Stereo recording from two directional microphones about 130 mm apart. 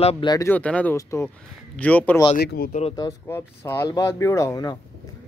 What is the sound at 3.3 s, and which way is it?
Speech, 20° left (ahead or behind).